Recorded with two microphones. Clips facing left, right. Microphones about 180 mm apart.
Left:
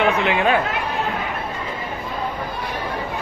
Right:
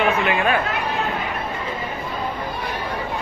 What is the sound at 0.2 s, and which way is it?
Speech, 20° left (ahead or behind).